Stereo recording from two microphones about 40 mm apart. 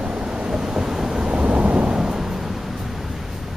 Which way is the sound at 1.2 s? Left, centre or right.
Right.